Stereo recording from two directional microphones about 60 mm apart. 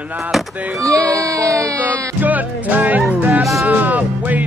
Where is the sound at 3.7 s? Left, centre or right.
Right.